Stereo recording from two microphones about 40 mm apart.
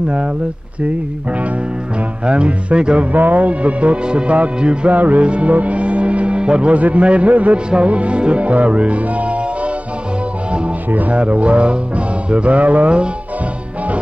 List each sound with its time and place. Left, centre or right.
2.2 s speech: right
3.1 s speech: right
4.0 s speech: right
4.8 s speech: right
10.9 s speech: right